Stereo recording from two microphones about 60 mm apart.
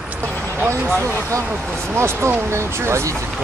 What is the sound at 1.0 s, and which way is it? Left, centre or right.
Speech, right.